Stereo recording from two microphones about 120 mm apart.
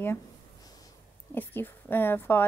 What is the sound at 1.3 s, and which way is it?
A woman's voice, 15° left (ahead or behind).